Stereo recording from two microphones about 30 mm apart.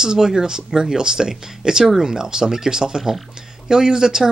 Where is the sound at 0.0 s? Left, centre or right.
Right.